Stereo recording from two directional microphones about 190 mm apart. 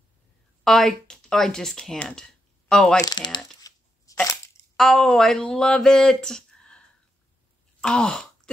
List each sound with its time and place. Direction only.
0.7 s speech: centre (ahead or behind)
3.0 s a sound: 20° left (ahead or behind)
4.7 s speech: 5° left (ahead or behind)
7.8 s speech: 5° left (ahead or behind)